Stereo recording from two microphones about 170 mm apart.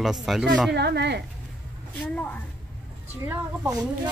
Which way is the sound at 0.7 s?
80° right.